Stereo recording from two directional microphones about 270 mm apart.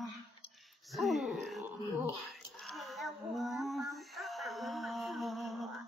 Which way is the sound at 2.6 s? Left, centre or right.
Centre.